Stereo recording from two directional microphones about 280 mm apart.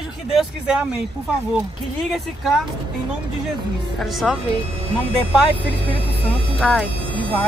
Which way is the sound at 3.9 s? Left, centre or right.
Centre.